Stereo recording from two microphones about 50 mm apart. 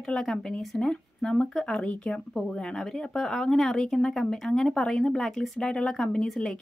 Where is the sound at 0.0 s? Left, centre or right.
Centre.